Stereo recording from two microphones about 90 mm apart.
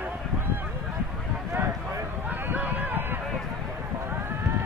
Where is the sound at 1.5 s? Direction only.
30° right (ahead or behind).